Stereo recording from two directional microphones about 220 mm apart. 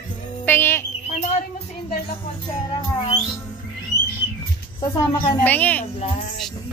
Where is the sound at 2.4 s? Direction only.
20° left (ahead or behind).